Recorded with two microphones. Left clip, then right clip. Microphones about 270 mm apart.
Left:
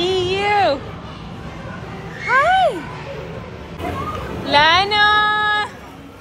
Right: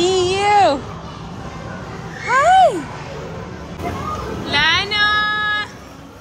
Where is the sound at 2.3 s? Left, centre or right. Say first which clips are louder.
Right 3 dB; centre.